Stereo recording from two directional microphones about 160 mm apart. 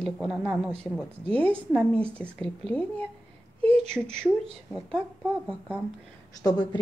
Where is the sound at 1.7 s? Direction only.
10° left (ahead or behind).